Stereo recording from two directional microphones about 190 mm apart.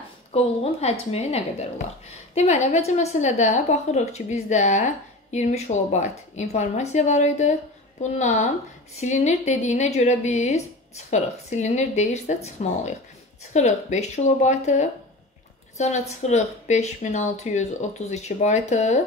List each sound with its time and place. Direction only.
0.3 s speech: 35° left (ahead or behind)